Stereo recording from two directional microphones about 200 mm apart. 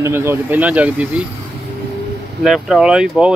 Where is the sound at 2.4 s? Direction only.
Centre (ahead or behind).